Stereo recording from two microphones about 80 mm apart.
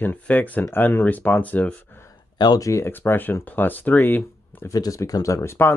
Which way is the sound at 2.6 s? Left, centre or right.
Left.